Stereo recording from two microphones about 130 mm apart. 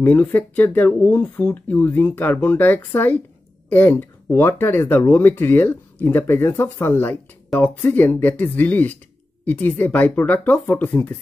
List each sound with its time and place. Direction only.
0.0 s speech: 15° left (ahead or behind)